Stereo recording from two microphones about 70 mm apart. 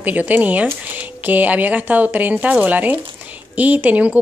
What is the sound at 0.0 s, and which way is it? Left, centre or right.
Speech, right.